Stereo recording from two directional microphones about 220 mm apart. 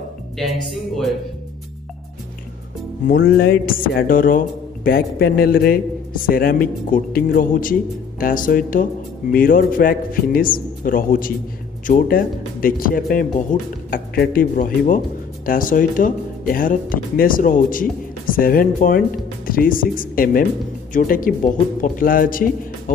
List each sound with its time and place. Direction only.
0.4 s speech: centre (ahead or behind)
3.1 s speech: 45° left (ahead or behind)